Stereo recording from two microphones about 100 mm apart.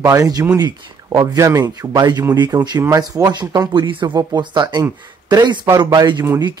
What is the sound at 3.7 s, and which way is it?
Speech, 50° right (ahead or behind).